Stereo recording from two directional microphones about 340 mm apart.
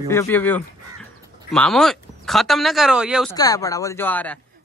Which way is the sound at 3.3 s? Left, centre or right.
Centre.